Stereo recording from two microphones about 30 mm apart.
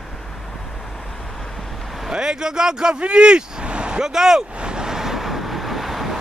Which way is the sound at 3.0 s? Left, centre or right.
Right.